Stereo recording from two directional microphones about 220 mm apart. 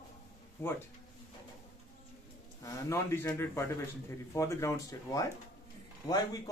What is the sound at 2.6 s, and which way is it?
A man's voice, 10° left (ahead or behind).